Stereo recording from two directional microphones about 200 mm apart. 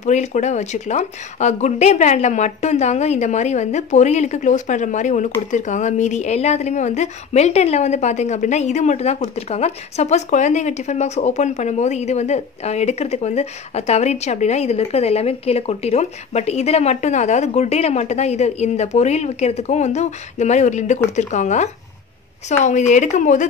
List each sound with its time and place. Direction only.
0.0 s a woman's voice: 35° left (ahead or behind)